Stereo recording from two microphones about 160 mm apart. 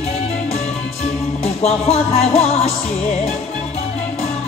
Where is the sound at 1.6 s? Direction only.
40° left (ahead or behind).